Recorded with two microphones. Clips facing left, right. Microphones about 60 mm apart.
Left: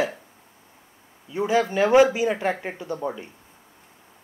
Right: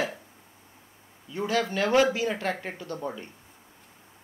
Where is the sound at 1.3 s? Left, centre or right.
Centre.